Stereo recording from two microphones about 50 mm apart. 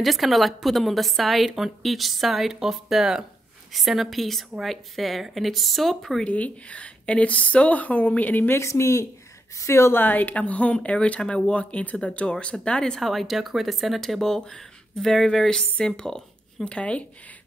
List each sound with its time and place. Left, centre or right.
0.0 s speech: centre
6.2 s speech: left
8.5 s speech: left
9.6 s a woman's voice: left
9.9 s speech: left; by 13.0 s centre
13.0 s speech: centre
16.7 s speech: left